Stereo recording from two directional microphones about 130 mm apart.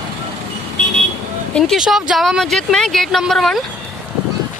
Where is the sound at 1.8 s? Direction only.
5° right (ahead or behind).